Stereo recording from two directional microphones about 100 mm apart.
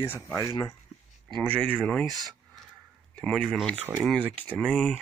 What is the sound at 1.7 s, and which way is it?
Speech, 5° left (ahead or behind).